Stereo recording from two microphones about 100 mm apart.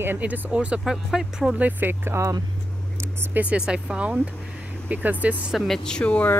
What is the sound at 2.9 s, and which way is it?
Speech, 15° right (ahead or behind).